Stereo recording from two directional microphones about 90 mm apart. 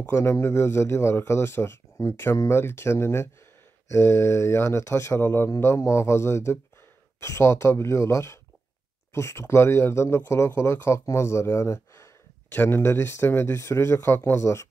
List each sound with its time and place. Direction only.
0.0 s a man's voice: 30° left (ahead or behind)